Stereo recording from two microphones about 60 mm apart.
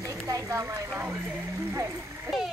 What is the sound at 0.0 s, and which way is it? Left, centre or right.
Speech, right.